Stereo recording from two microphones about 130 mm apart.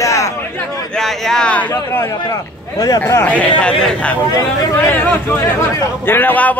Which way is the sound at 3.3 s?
10° left (ahead or behind).